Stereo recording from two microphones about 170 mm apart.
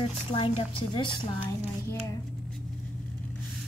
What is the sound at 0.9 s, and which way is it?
Speech, 30° left (ahead or behind).